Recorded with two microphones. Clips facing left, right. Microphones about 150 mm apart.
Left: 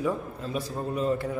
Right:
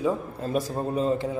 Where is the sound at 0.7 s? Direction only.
30° right (ahead or behind).